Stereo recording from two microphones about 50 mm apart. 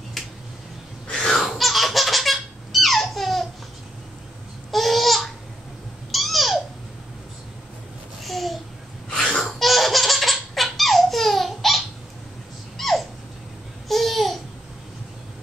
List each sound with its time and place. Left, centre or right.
1.2 s laughter: centre
4.6 s babbling: centre
8.2 s babbling: centre
9.2 s laughter: centre
12.7 s a sound: centre
13.8 s babbling: centre